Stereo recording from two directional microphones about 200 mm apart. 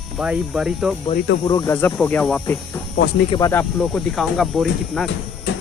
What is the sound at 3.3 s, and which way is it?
Speech, 15° left (ahead or behind).